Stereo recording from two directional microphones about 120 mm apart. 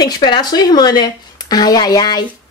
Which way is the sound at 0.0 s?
40° left (ahead or behind).